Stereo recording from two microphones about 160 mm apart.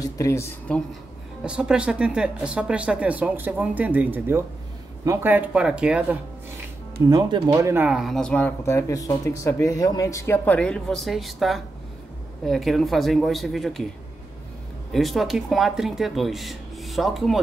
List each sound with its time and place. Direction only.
0.0 s speech: 20° left (ahead or behind)
1.4 s speech: 5° right (ahead or behind)
7.1 s speech: 25° right (ahead or behind)
7.5 s speech: 15° right (ahead or behind); by 13.8 s centre (ahead or behind)
14.9 s speech: centre (ahead or behind)